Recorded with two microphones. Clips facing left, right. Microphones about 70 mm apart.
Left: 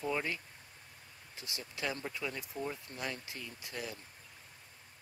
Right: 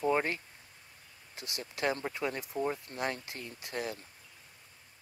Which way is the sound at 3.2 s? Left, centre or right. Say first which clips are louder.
Right 2 dB; right.